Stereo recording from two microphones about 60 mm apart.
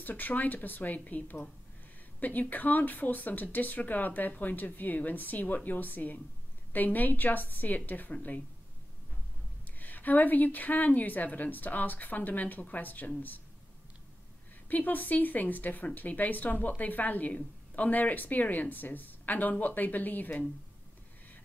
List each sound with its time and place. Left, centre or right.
0.0 s speech: left
9.8 s speech: left
14.7 s speech: left